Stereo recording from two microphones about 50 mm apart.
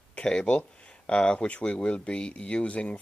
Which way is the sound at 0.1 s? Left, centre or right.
Centre.